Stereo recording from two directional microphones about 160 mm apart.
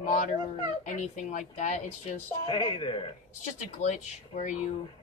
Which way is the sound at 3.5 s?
50° left (ahead or behind).